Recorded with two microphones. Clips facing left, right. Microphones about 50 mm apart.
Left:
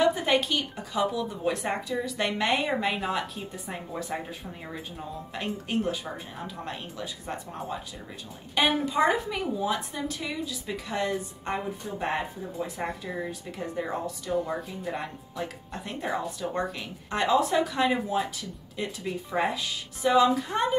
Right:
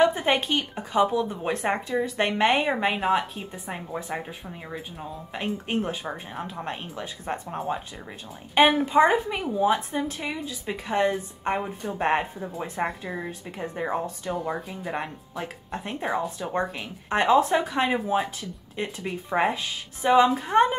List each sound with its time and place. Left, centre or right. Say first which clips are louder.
0.0 s speech: right 2 dB; right
2.7 s speech: right 4 dB; right
4.6 s speech: right 2 dB; centre
5.7 s speech: left 1 dB; right
8.8 s speech: right 5 dB; right
11.8 s speech: right 5 dB; right
14.3 s speech: left 1 dB; centre
15.3 s speech: right 2 dB; right